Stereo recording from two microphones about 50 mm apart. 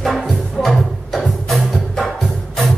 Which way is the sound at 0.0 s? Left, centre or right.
Centre.